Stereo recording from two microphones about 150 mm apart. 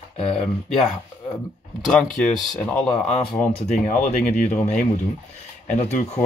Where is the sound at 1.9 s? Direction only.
5° left (ahead or behind).